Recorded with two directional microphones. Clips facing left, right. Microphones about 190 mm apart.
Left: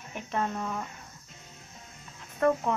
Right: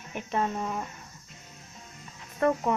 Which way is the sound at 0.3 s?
15° right (ahead or behind).